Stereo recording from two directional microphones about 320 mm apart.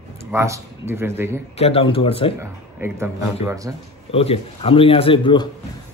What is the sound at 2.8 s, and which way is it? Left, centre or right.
Speech, centre.